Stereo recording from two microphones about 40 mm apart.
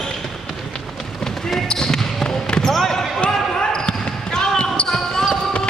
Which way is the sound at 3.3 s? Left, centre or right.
Centre.